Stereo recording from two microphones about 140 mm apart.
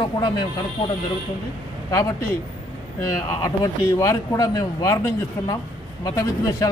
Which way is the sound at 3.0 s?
25° left (ahead or behind).